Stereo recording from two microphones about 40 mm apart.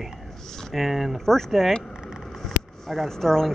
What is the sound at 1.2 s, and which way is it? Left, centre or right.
Speech, centre.